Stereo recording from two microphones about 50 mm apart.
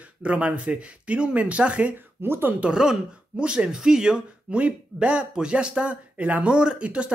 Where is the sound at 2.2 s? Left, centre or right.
Right.